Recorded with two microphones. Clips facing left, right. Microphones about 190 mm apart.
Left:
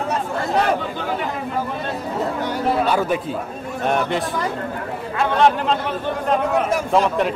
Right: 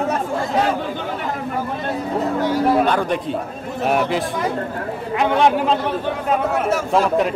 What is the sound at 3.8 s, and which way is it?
Speech, 5° right (ahead or behind).